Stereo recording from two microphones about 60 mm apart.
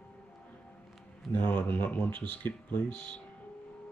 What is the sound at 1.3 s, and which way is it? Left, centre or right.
Speech, left.